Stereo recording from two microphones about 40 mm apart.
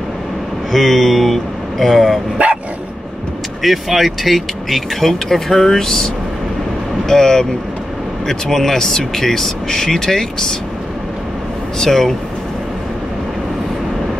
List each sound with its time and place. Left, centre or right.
0.7 s speech: centre
2.3 s dog: right
3.6 s speech: centre
11.8 s speech: centre